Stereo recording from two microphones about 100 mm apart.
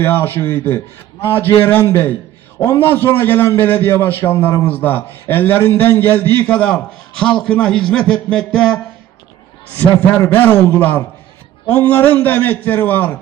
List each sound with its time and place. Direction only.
0.0 s a man's voice: 20° left (ahead or behind)